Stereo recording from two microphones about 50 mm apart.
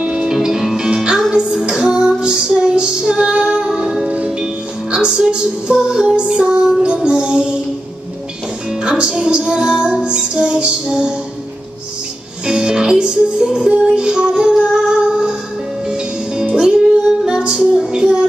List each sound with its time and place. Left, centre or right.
0.0 s music: centre
1.5 s female singing: centre
4.9 s music: centre
8.6 s music: centre
12.4 s music: centre